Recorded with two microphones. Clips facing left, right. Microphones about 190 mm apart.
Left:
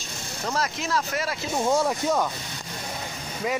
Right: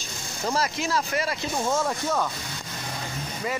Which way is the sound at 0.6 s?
Centre (ahead or behind).